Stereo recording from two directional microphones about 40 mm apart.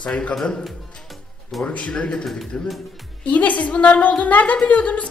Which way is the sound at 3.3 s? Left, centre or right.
Left.